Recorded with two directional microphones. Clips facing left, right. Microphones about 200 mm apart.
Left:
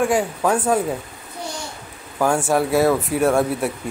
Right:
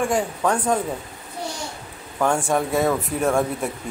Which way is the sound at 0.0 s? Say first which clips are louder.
Left 3 dB; 5° left (ahead or behind).